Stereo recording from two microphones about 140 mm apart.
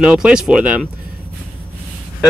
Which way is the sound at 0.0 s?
5° right (ahead or behind).